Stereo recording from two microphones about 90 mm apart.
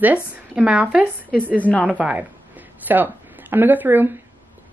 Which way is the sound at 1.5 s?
15° left (ahead or behind).